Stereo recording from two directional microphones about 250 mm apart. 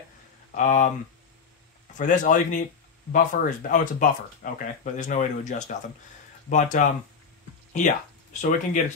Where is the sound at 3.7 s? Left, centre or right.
Left.